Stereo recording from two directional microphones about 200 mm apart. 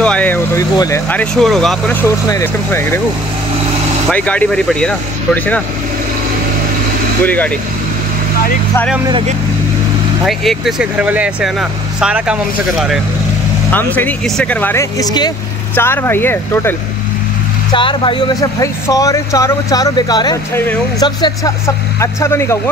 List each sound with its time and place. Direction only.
0.0 s vehicle: 5° left (ahead or behind)
0.7 s speech: 15° left (ahead or behind)
1.3 s speech: centre (ahead or behind)
4.1 s speech: 5° left (ahead or behind)
7.2 s speech: 10° left (ahead or behind)
10.2 s speech: centre (ahead or behind)
17.7 s speech: 25° left (ahead or behind)